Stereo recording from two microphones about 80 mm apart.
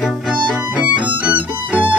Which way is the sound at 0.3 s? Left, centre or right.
Centre.